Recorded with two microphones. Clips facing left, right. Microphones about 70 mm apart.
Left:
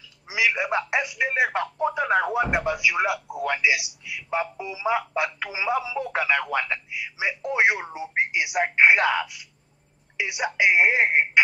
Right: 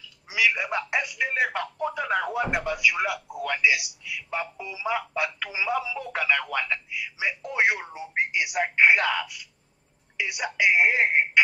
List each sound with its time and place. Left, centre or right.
0.3 s speech: left